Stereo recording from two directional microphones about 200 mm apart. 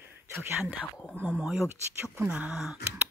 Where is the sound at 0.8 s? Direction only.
5° left (ahead or behind).